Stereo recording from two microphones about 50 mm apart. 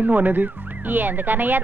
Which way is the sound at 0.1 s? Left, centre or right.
Right.